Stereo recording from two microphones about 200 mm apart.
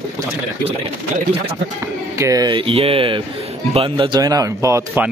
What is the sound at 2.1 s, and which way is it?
Speech, 15° right (ahead or behind).